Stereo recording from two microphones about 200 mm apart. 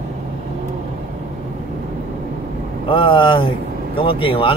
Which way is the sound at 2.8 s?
25° left (ahead or behind).